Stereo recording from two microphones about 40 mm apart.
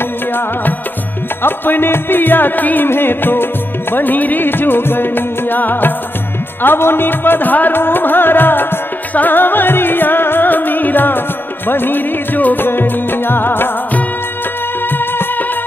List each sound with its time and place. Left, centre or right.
1.4 s music: left
2.9 s music: left
3.9 s music: left
6.6 s music: left